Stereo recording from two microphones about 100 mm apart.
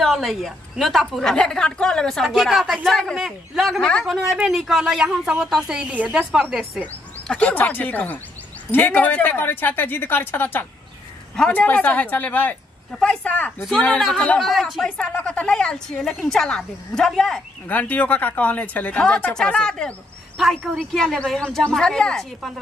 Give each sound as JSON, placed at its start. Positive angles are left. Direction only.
{"t": 0.0, "sound": "a woman's voice", "side_deg": 0}
{"t": 6.5, "sound": "a woman's voice", "side_deg": 0}
{"t": 6.8, "sound": "a woman's voice", "side_deg": 10}
{"t": 14.4, "sound": "a woman's voice", "side_deg": 0}
{"t": 17.6, "sound": "a woman's voice", "side_deg": 15}